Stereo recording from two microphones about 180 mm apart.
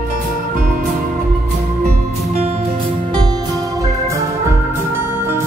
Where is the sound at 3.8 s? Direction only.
15° right (ahead or behind).